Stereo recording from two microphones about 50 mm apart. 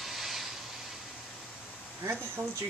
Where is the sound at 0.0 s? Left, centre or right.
Centre.